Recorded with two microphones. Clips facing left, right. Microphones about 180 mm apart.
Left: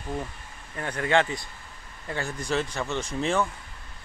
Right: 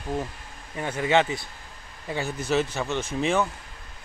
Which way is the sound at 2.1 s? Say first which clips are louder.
Right 3 dB; 5° right (ahead or behind).